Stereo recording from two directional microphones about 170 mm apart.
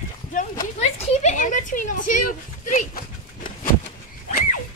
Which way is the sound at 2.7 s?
50° left (ahead or behind).